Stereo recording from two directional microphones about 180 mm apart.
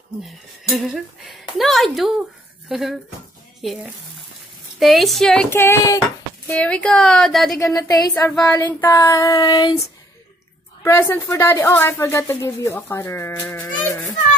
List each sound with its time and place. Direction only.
0.2 s speech: centre (ahead or behind)
7.5 s a woman's voice: 20° left (ahead or behind)
10.8 s a woman's voice: 15° left (ahead or behind)